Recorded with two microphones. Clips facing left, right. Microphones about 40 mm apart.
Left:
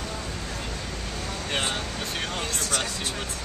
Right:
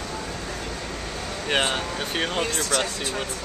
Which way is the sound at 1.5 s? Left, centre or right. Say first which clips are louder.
Right 6 dB; right.